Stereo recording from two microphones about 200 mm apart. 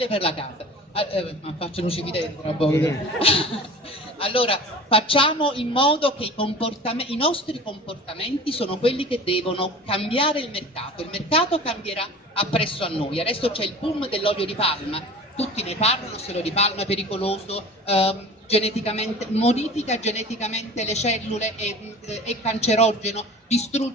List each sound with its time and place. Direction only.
0.0 s a man's voice: 30° left (ahead or behind)
2.7 s a man's voice: 10° left (ahead or behind)
3.2 s a man's voice: 30° left (ahead or behind)